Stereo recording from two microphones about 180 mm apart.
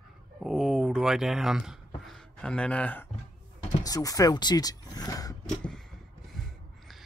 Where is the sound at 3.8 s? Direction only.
20° left (ahead or behind).